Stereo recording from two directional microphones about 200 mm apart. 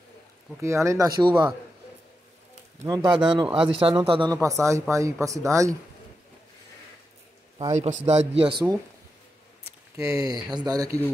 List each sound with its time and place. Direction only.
0.6 s speech: 15° right (ahead or behind)
2.8 s speech: 20° right (ahead or behind)
7.7 s a man's voice: 35° right (ahead or behind)
9.9 s speech: 15° right (ahead or behind)